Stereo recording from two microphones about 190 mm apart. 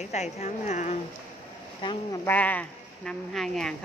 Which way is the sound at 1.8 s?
25° left (ahead or behind).